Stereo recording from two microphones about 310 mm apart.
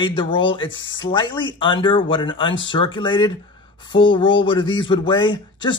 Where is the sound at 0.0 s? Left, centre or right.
Centre.